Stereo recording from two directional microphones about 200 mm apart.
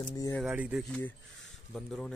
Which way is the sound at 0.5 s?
5° right (ahead or behind).